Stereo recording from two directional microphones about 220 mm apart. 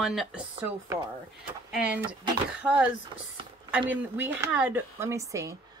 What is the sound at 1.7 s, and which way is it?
Speech, 5° right (ahead or behind).